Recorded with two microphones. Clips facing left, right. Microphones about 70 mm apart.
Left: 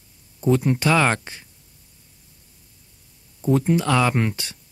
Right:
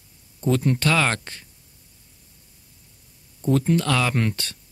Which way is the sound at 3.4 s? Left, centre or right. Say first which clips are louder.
Left 1 dB; centre.